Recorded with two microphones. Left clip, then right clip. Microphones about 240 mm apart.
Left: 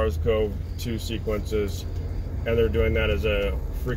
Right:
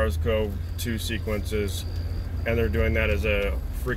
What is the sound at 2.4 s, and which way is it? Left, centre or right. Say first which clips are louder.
Speech: left 3 dB; right.